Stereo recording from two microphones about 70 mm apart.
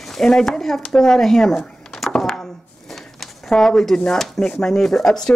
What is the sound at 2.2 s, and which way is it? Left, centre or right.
Chopping, centre.